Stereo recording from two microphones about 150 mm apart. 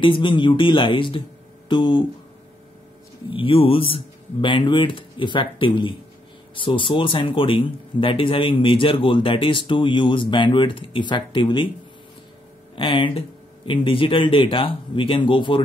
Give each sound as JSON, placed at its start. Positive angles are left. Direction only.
{"t": 0.0, "sound": "speech", "side_deg": 35}
{"t": 3.3, "sound": "speech", "side_deg": 35}
{"t": 12.7, "sound": "speech", "side_deg": 35}